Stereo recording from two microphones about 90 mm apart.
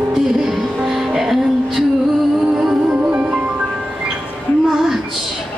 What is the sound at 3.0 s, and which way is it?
Music, 15° right (ahead or behind).